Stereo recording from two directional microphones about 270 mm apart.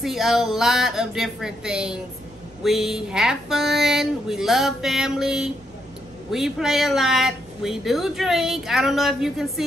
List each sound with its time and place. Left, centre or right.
0.0 s speech: centre